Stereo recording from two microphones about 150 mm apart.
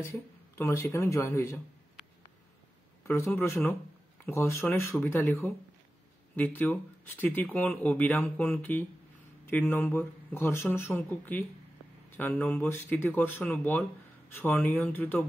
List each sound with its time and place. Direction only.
0.0 s speech: 15° left (ahead or behind)
3.1 s speech: 15° left (ahead or behind)